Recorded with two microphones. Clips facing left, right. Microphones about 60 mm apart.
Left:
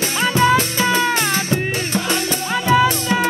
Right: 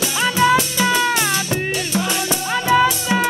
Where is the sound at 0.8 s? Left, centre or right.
Left.